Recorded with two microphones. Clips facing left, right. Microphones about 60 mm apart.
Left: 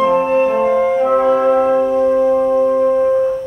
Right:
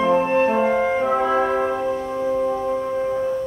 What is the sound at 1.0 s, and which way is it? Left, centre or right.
Music, centre.